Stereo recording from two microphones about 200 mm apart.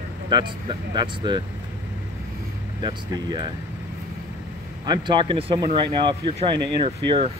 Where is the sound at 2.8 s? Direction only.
20° right (ahead or behind).